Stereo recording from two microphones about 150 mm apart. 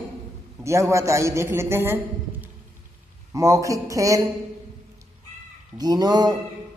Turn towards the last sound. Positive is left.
turn(degrees=-25)  # may be behind; listen again after turning